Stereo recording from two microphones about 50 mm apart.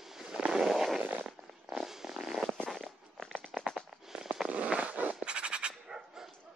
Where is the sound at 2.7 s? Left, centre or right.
Centre.